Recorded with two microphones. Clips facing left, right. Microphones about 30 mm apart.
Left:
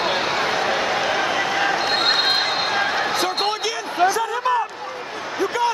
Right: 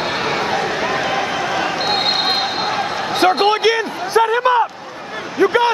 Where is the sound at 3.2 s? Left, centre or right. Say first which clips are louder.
Right 8 dB; right.